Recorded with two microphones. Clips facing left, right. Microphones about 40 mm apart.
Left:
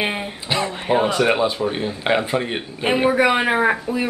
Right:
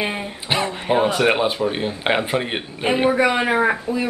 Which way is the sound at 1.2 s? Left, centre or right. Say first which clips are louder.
Even; centre.